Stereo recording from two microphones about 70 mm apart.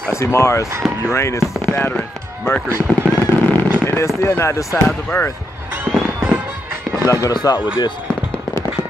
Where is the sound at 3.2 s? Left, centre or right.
Left.